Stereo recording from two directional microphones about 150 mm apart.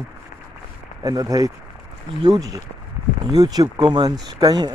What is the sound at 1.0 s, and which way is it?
Speech, 25° right (ahead or behind).